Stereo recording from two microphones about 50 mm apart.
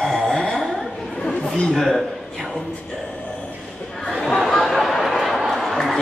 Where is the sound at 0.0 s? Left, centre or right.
Centre.